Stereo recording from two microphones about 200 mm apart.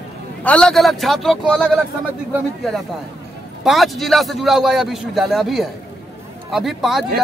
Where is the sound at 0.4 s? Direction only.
5° left (ahead or behind).